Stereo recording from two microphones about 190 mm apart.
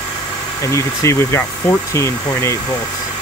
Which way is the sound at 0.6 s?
15° left (ahead or behind).